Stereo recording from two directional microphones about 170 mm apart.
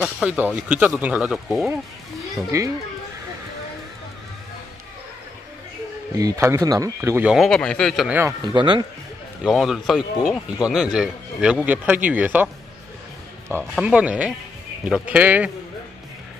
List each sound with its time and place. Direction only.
0.0 s speech: 5° right (ahead or behind)
2.5 s speech: 20° right (ahead or behind)
6.1 s speech: 20° right (ahead or behind); by 8.2 s centre (ahead or behind)
8.5 s speech: 30° right (ahead or behind)
9.4 s speech: centre (ahead or behind)
13.7 s speech: 5° right (ahead or behind)